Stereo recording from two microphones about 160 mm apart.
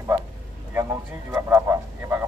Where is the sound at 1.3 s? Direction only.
15° right (ahead or behind).